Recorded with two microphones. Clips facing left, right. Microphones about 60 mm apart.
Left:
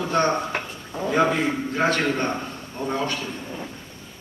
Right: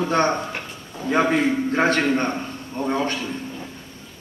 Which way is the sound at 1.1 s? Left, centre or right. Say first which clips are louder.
Right 2 dB; right.